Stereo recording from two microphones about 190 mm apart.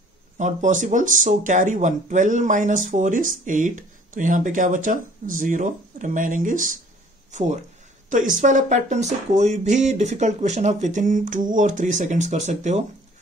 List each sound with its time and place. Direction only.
0.4 s speech: 40° right (ahead or behind)